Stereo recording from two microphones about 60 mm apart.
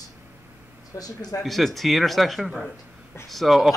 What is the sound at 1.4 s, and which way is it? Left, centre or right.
Speech, centre.